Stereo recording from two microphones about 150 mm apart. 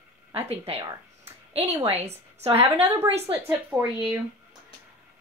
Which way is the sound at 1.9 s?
45° right (ahead or behind).